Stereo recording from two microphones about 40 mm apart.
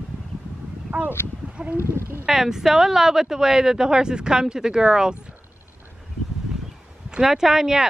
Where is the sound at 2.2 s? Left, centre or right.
Centre.